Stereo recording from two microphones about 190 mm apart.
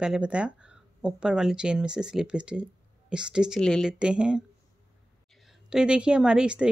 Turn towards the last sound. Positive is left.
turn(degrees=-5)  # may be behind; listen again after turning